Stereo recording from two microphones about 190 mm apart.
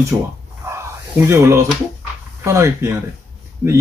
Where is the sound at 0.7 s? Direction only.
15° right (ahead or behind).